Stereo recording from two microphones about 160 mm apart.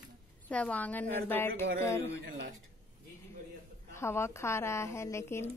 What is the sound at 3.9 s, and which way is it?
Speech, 15° left (ahead or behind).